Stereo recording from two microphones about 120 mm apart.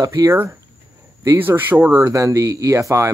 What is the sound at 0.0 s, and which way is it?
Speech, 30° right (ahead or behind).